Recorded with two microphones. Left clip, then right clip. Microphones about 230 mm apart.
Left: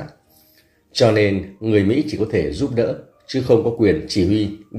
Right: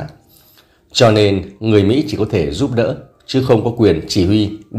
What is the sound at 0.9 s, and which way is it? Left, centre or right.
Speech, centre.